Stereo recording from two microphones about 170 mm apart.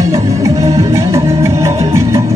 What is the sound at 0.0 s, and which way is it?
Music, 20° right (ahead or behind).